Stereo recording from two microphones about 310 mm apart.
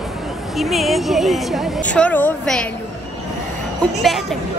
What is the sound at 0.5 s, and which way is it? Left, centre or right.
Speech, centre.